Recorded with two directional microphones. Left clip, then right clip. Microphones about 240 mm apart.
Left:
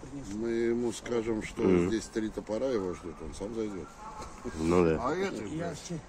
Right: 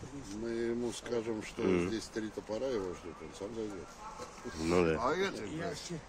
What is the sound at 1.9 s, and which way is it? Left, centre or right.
Speech, left.